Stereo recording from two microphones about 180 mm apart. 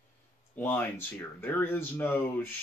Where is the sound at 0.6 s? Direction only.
10° left (ahead or behind).